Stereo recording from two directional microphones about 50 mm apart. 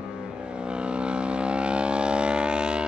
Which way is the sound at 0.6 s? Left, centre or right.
Centre.